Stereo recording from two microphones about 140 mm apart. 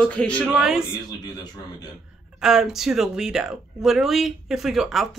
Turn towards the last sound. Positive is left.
turn(degrees=0)  # may be behind; listen again after turning